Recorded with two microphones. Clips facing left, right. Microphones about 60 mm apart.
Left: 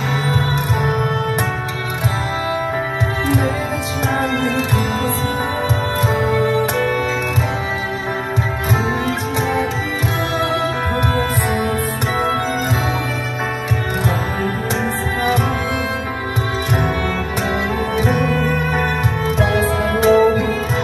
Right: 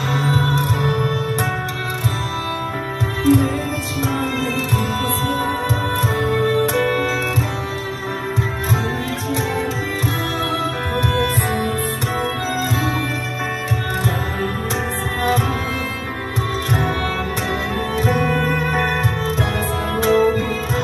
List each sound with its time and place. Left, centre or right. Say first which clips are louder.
0.3 s music: even; left
5.9 s music: left 3 dB; left
19.4 s music: left 5 dB; left